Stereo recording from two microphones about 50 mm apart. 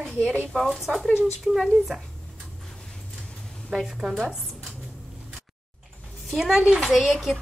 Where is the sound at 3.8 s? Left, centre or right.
Centre.